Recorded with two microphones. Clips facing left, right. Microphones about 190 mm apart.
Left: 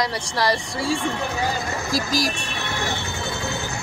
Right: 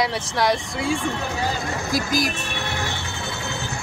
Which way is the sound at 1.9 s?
55° right (ahead or behind).